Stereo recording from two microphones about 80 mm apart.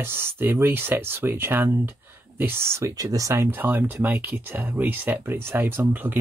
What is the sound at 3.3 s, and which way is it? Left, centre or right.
Speech, right.